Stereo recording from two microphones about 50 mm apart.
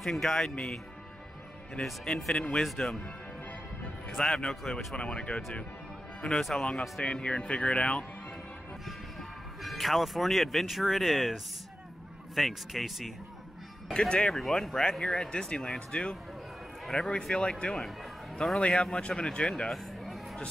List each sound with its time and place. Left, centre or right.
0.0 s speech: centre
1.8 s speech: centre
4.1 s speech: centre
6.8 s speech: centre
9.6 s speech: centre
12.4 s speech: centre
13.9 s speech: centre
14.3 s speech: centre
15.9 s speech: left
16.8 s a man's voice: centre
17.3 s speech: centre